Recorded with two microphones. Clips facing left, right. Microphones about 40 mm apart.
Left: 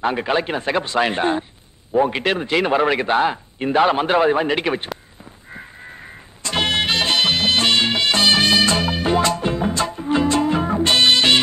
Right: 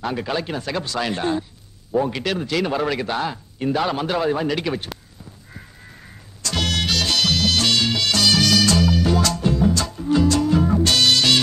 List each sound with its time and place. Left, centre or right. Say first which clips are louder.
0.0 s a man's voice: left 5 dB; left
5.5 s music: left 9 dB; left